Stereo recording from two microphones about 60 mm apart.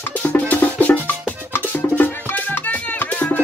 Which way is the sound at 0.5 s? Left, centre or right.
Left.